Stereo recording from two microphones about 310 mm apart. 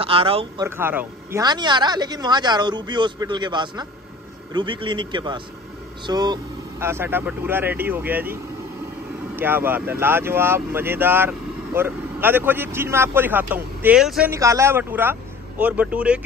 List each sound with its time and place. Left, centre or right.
0.0 s speech: centre